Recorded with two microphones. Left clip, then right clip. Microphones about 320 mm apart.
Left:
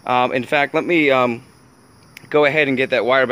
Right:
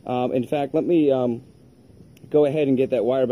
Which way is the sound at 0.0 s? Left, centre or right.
Left.